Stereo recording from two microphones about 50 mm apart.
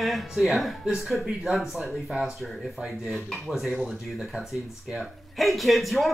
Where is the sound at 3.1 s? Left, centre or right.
Centre.